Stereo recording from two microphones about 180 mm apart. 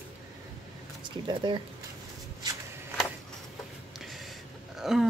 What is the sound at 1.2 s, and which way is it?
Speech, 25° right (ahead or behind).